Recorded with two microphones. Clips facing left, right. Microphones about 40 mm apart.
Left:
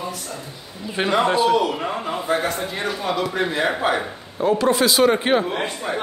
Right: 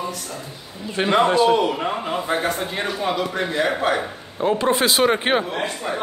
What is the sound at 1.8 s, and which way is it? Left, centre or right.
Speech, centre.